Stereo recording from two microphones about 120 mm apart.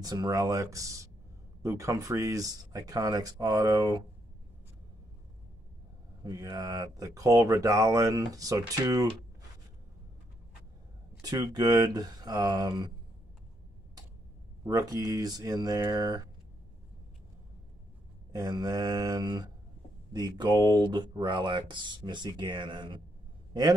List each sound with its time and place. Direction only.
0.0 s speech: 35° right (ahead or behind)
6.2 s speech: 30° right (ahead or behind)
11.1 s speech: 30° right (ahead or behind)
14.6 s speech: 30° right (ahead or behind)
18.3 s speech: 30° right (ahead or behind)